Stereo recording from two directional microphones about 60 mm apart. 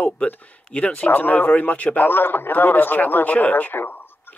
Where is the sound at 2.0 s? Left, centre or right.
Left.